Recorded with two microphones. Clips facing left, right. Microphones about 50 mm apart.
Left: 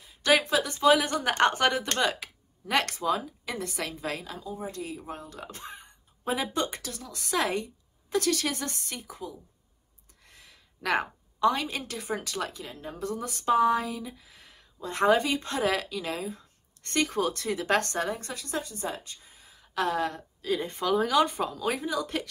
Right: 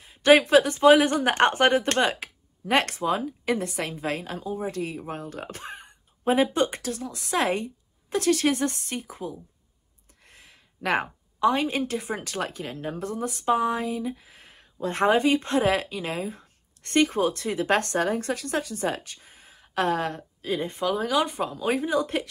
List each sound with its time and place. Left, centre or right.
0.0 s a woman's voice: right
21.0 s speech: centre
21.7 s a woman's voice: right